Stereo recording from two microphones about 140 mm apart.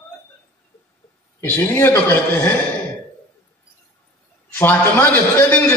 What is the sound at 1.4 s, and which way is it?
A man's voice, 15° left (ahead or behind).